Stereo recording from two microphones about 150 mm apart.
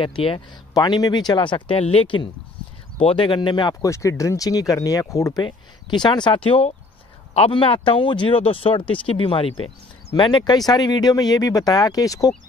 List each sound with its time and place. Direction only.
0.0 s speech: 35° left (ahead or behind)